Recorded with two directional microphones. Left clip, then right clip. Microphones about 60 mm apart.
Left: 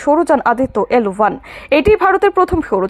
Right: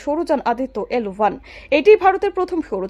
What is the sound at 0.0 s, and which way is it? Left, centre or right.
Speech, left.